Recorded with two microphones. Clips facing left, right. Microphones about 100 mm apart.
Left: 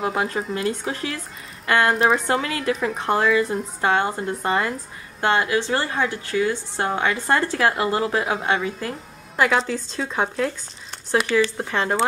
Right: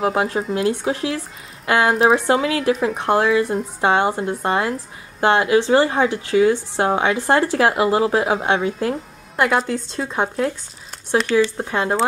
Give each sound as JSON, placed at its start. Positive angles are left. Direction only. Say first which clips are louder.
{"t": 0.0, "sound": "speech", "louder": "right 4 dB", "side_deg": 0}
{"t": 5.2, "sound": "speech", "louder": "right 5 dB", "side_deg": -15}